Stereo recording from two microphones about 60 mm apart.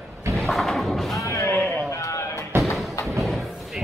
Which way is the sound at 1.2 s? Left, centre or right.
Left.